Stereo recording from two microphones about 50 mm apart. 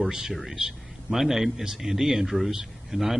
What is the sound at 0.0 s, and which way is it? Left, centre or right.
A man's voice, centre.